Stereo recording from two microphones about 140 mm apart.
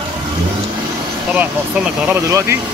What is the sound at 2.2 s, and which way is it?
Speech, 20° right (ahead or behind).